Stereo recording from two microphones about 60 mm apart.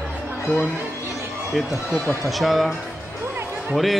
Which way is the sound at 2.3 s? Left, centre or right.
Centre.